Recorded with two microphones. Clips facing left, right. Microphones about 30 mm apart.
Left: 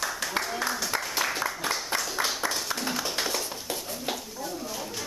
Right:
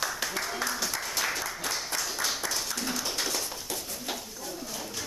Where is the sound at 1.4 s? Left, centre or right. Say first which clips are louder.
Left 4 dB; left.